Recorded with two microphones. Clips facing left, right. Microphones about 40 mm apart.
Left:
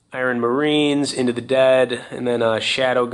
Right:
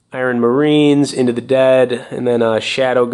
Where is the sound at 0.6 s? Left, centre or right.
Right.